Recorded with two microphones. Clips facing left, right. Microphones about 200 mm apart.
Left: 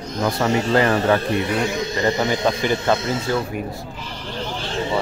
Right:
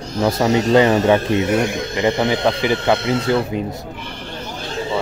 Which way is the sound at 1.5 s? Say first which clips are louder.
Right 3 dB; 50° right (ahead or behind).